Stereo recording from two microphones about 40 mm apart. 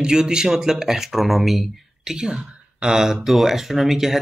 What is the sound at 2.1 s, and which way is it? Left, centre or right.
Speech, centre.